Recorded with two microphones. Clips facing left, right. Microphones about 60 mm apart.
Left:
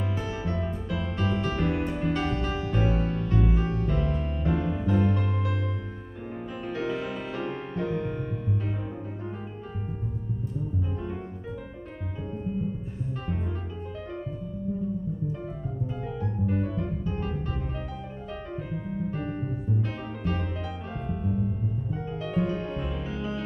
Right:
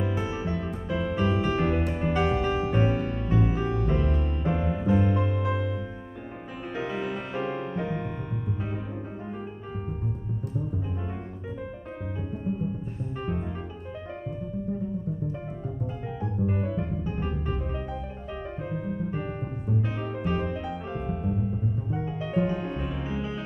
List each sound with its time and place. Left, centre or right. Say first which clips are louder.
0.0 s music: right 2 dB; centre
16.1 s music: right 1 dB; centre
18.7 s keyboard: right 1 dB; centre
20.0 s music: right 3 dB; centre